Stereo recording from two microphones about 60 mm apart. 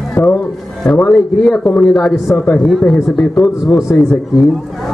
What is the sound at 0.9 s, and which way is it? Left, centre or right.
Speech, left.